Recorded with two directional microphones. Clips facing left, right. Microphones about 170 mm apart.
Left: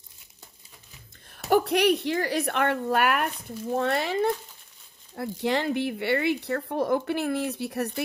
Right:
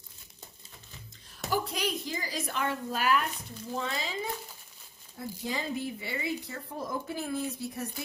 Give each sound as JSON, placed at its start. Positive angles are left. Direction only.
{"t": 1.5, "sound": "a woman's voice", "side_deg": 70}